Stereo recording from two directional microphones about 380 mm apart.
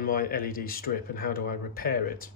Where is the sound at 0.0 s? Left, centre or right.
Left.